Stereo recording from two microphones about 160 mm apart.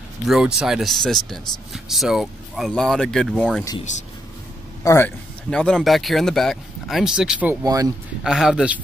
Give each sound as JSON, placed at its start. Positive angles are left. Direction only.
{"t": 0.3, "sound": "speech", "side_deg": -5}
{"t": 4.8, "sound": "speech", "side_deg": 15}
{"t": 5.5, "sound": "speech", "side_deg": 5}
{"t": 7.6, "sound": "speech", "side_deg": -20}
{"t": 8.2, "sound": "speech", "side_deg": -5}